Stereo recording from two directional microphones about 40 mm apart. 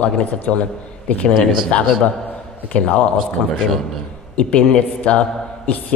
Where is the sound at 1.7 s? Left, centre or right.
Left.